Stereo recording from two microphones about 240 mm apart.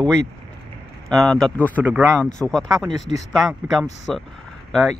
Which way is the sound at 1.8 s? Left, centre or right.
Centre.